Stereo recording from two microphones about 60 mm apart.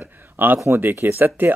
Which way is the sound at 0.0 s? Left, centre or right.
Right.